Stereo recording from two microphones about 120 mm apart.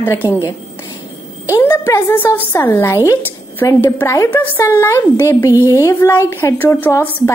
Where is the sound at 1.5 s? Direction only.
25° left (ahead or behind).